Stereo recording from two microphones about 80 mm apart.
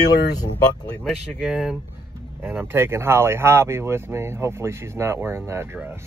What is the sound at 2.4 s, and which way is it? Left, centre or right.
Speech, right.